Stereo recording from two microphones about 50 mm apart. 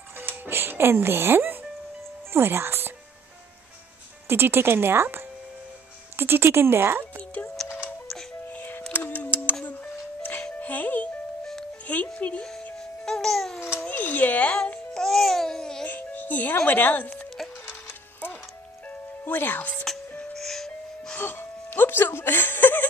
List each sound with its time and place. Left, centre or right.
0.2 s speech: right
4.3 s speech: right
8.5 s music: left
8.9 s a sound: left
10.6 s music: left
12.7 s music: centre
13.8 s a sound: left
15.0 s babbling: centre
15.8 s music: left
16.6 s a woman's voice: left
18.9 s music: left
20.3 s music: centre
21.2 s music: left